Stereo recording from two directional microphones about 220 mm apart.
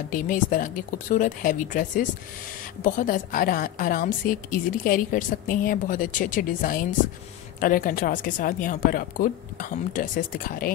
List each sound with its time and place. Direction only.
0.1 s a woman's voice: 40° left (ahead or behind)